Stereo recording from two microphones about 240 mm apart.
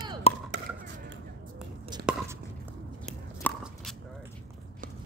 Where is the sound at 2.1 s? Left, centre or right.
Centre.